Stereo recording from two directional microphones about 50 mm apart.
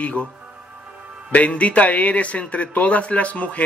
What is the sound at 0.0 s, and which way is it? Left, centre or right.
Speech, left.